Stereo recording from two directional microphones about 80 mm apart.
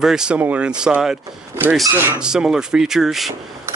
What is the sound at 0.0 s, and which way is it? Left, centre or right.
Speech, centre.